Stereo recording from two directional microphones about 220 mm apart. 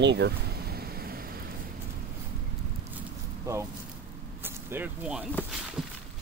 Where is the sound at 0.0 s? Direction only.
50° right (ahead or behind).